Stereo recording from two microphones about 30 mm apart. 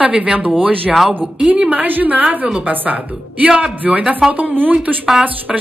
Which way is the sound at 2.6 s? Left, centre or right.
Right.